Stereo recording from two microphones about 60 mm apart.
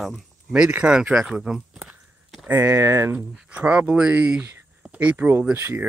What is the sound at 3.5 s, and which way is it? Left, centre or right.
Speech, right.